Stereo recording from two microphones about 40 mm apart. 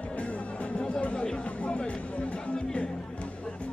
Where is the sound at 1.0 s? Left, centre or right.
Left.